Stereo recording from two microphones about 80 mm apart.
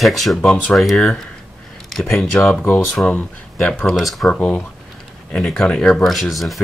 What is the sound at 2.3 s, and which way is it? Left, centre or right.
Speech, centre.